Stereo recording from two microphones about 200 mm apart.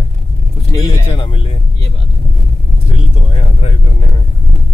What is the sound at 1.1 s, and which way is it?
Speech, 25° left (ahead or behind).